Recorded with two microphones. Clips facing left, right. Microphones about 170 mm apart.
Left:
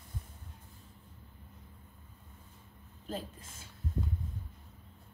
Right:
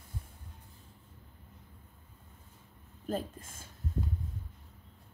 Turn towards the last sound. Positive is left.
turn(degrees=-50)  # may be behind; listen again after turning